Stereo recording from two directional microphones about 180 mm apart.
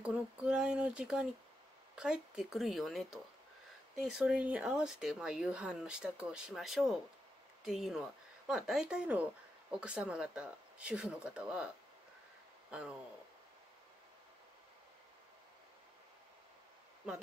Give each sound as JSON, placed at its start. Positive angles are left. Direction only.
{"t": 0.0, "sound": "speech", "side_deg": -5}